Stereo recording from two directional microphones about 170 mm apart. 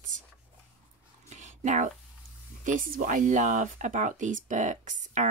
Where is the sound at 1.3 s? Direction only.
45° right (ahead or behind).